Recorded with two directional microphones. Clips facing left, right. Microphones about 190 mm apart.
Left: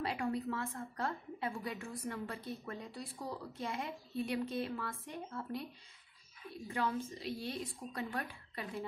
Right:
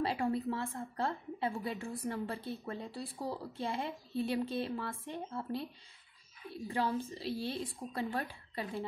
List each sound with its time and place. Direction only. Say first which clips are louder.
0.0 s a woman's voice: right 3 dB; 30° right (ahead or behind)